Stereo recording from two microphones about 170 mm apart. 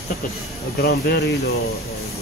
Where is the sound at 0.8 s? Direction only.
70° left (ahead or behind).